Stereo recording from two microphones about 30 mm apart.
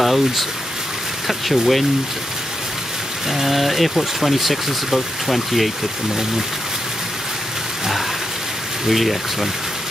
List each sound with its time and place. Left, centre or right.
0.0 s speech: centre
3.3 s speech: centre
8.8 s speech: centre